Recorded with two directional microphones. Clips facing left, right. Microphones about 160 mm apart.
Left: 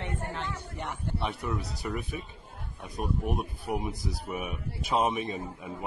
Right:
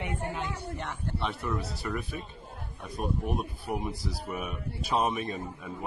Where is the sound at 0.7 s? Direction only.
15° left (ahead or behind).